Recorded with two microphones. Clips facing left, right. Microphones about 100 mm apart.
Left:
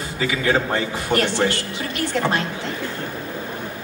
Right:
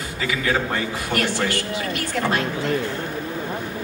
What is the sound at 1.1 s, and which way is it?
Speech, 25° left (ahead or behind).